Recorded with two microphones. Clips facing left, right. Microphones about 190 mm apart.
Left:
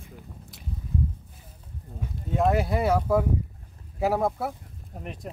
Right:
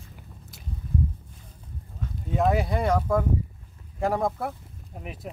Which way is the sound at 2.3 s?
Centre (ahead or behind).